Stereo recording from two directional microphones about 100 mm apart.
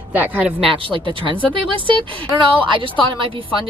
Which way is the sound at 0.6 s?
60° right (ahead or behind).